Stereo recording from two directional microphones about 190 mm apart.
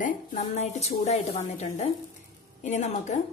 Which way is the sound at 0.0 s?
40° left (ahead or behind).